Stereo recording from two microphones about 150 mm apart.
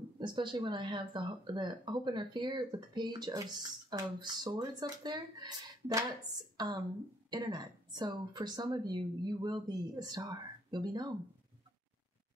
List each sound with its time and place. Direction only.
0.2 s speech: 30° right (ahead or behind)